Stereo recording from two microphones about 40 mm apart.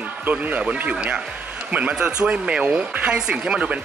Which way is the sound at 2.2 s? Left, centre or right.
Right.